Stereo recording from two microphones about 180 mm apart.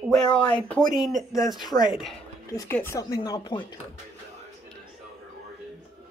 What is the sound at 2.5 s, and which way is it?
Speech, 15° left (ahead or behind).